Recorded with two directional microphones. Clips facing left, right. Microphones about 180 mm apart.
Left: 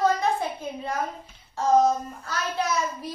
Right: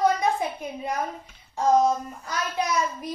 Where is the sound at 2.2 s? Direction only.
15° right (ahead or behind).